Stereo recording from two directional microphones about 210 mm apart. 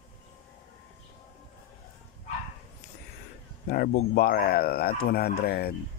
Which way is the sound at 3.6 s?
45° left (ahead or behind).